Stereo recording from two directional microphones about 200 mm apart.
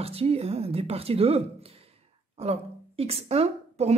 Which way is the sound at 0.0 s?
30° right (ahead or behind).